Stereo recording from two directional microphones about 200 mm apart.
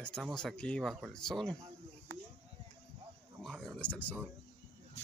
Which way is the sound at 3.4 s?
Centre (ahead or behind).